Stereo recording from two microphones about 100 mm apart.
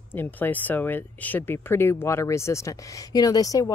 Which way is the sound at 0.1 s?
20° left (ahead or behind).